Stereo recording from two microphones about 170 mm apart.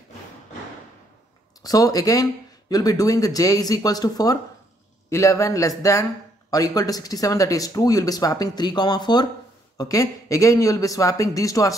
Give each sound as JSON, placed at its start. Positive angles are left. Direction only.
{"t": 1.6, "sound": "a man's voice", "side_deg": 20}